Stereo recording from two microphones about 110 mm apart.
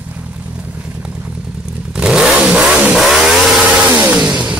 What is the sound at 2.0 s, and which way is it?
Vehicle, 5° right (ahead or behind).